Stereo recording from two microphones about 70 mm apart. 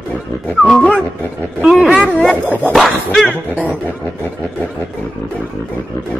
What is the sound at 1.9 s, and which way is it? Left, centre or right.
Speech, centre.